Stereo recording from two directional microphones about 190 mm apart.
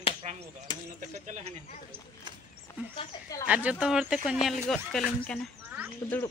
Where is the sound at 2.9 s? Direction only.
25° left (ahead or behind).